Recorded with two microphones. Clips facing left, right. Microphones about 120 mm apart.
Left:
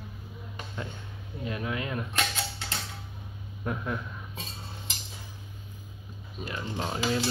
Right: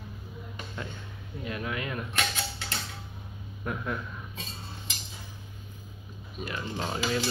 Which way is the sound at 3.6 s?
20° left (ahead or behind).